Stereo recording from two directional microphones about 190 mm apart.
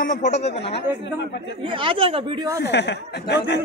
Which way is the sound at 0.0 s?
40° left (ahead or behind).